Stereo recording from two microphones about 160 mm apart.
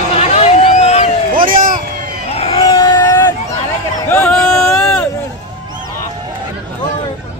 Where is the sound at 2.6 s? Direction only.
30° left (ahead or behind).